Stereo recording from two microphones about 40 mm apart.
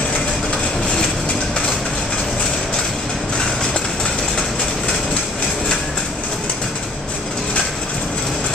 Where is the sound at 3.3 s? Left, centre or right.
Centre.